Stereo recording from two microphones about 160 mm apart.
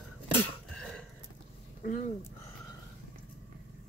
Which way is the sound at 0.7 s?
5° left (ahead or behind).